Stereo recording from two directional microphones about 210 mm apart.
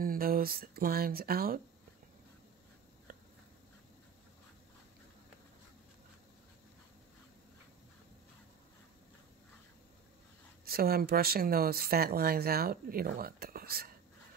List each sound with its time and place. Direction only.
0.0 s speech: 45° right (ahead or behind)
3.1 s a sound: 45° right (ahead or behind)
10.6 s speech: 45° right (ahead or behind)